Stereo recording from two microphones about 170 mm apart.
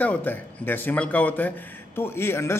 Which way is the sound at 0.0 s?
10° left (ahead or behind).